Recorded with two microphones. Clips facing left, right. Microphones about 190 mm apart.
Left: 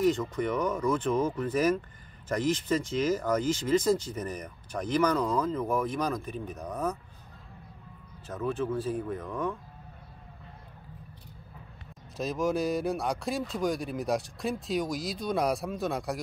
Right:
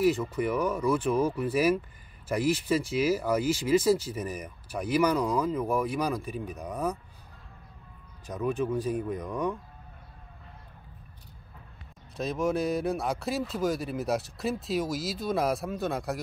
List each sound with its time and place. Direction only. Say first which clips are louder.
0.0 s speech: right 1 dB; 5° right (ahead or behind)
8.3 s speech: right 2 dB; 15° right (ahead or behind)
12.2 s speech: even; centre (ahead or behind)